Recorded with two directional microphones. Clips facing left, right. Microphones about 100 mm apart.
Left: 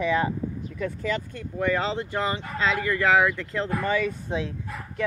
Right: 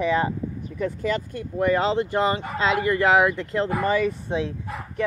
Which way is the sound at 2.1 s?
25° right (ahead or behind).